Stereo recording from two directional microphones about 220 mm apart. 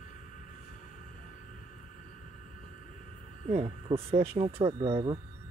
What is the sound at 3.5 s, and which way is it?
Speech, 25° right (ahead or behind).